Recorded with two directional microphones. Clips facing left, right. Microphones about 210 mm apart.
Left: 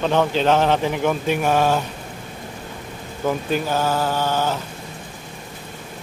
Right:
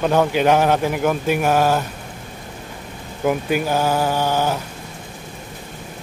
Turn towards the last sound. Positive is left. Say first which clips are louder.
# right 2 dB
turn(degrees=-10)  # may be behind; listen again after turning